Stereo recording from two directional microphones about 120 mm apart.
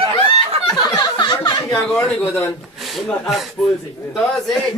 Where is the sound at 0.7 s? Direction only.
35° left (ahead or behind).